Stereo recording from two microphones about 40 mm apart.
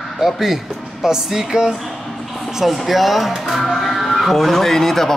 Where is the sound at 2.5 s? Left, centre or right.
Centre.